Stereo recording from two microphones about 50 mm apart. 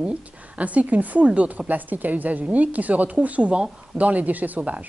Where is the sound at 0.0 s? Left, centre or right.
Right.